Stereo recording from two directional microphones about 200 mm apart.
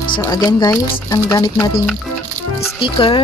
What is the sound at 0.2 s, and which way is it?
Speech, 15° left (ahead or behind).